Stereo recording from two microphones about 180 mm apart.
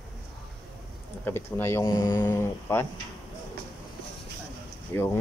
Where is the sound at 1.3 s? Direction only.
10° left (ahead or behind).